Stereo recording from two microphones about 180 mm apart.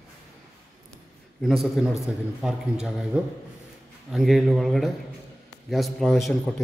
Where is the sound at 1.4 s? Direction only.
Centre (ahead or behind).